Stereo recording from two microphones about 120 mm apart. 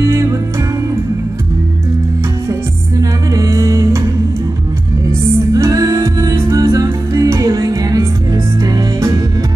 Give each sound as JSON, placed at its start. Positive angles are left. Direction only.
{"t": 3.3, "sound": "music", "side_deg": -25}
{"t": 5.5, "sound": "music", "side_deg": -30}